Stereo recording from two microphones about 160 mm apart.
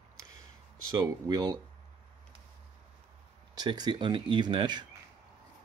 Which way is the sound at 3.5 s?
25° right (ahead or behind).